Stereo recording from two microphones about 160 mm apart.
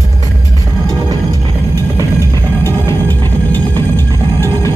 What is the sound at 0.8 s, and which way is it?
Music, 25° right (ahead or behind).